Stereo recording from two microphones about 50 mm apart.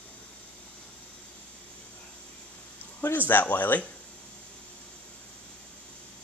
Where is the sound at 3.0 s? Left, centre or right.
Left.